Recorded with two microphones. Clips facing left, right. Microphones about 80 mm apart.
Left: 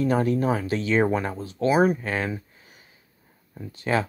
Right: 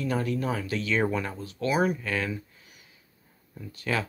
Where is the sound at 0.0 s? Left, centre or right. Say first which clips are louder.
Left 6 dB; left.